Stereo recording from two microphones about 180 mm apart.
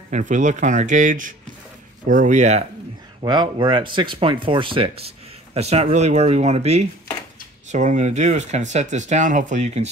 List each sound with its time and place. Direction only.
0.1 s speech: 45° right (ahead or behind)
3.2 s speech: 25° right (ahead or behind); by 9.8 s 40° right (ahead or behind)